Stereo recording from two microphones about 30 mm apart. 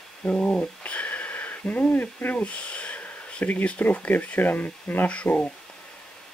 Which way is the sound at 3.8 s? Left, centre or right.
Left.